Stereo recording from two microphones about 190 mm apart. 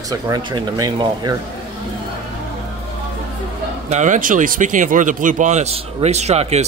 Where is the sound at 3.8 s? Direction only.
40° right (ahead or behind).